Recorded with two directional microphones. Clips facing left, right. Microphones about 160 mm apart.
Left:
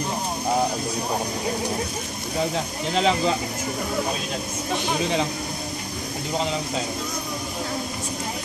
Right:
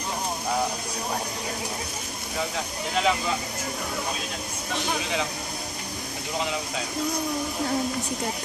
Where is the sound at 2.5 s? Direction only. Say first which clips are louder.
Left 4 dB; 30° left (ahead or behind).